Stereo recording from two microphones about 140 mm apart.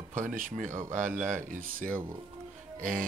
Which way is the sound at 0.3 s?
65° right (ahead or behind).